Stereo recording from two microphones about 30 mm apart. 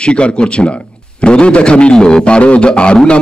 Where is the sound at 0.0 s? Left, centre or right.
Left.